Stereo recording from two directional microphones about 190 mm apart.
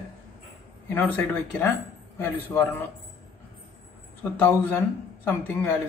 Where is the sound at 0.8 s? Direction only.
10° left (ahead or behind).